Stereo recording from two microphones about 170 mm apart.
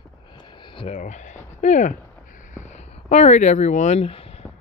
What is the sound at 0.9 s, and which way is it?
Speech, 45° left (ahead or behind).